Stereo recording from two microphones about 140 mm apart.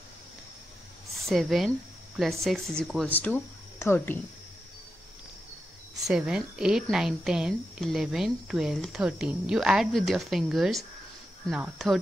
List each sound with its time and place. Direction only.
1.1 s speech: centre (ahead or behind)
3.8 s a woman's voice: 15° left (ahead or behind)
5.9 s speech: 5° right (ahead or behind)